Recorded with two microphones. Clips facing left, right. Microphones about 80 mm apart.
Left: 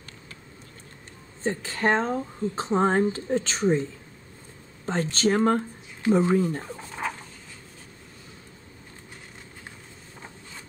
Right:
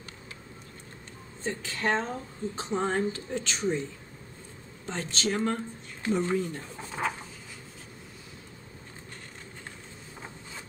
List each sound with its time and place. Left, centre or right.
1.4 s speech: left
4.8 s speech: left
6.8 s dog: centre